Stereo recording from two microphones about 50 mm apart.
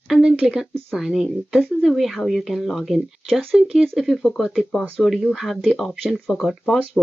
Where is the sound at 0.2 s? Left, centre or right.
Centre.